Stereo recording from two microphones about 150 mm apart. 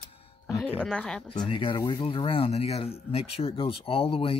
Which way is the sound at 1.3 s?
35° left (ahead or behind).